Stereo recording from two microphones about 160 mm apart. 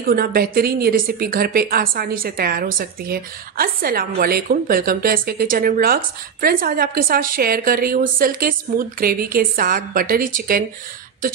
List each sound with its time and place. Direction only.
0.0 s a woman's voice: 70° right (ahead or behind)